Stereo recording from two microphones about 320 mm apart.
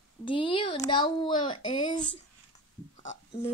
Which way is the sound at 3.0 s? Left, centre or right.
Left.